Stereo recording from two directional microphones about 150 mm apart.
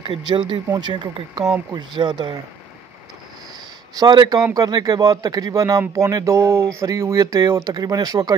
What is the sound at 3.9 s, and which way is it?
Speech, 30° right (ahead or behind).